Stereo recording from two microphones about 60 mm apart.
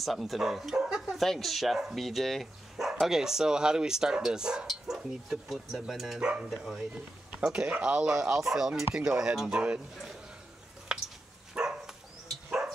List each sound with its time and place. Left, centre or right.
0.0 s speech: centre
6.1 s speech: centre
10.9 s a sound: centre
11.5 s dog: centre